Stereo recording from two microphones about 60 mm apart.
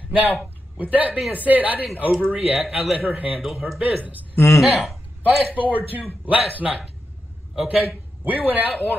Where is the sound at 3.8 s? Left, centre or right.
Right.